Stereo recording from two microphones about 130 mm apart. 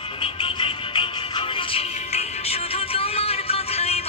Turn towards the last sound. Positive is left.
turn(degrees=50)  # may be behind; listen again after turning